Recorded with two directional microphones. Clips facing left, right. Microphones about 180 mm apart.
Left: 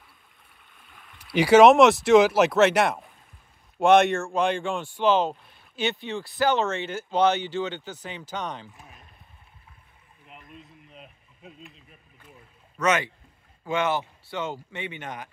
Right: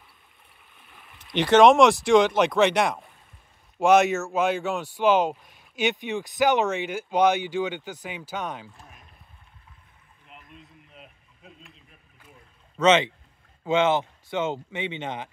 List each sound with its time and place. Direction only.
0.7 s boat: centre (ahead or behind)
1.1 s speech: 10° left (ahead or behind); by 8.6 s 10° right (ahead or behind)
10.3 s a sound: centre (ahead or behind)
12.8 s speech: 25° right (ahead or behind)